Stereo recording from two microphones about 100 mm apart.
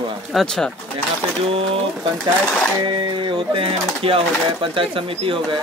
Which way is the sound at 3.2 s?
65° right (ahead or behind).